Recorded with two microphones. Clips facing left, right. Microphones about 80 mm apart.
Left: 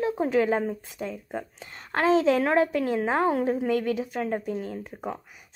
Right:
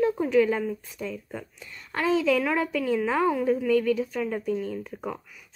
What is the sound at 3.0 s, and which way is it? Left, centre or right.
Speech, left.